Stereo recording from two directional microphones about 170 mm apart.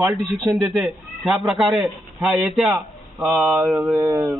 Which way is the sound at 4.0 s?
15° right (ahead or behind).